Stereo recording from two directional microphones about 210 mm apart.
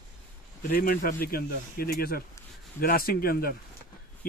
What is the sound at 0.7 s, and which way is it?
Speech, 45° left (ahead or behind).